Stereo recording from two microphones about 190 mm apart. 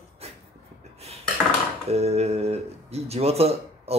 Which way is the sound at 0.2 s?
35° right (ahead or behind).